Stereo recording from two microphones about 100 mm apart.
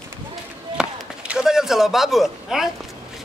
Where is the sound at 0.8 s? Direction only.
10° right (ahead or behind).